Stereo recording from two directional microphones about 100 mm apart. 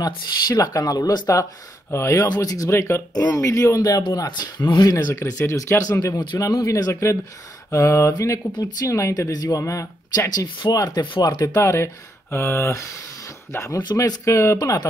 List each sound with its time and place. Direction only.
0.0 s speech: 40° left (ahead or behind)
2.2 s speech: 40° left (ahead or behind)
4.3 s speech: 45° left (ahead or behind)
4.9 s speech: 25° left (ahead or behind)
8.1 s speech: 40° left (ahead or behind)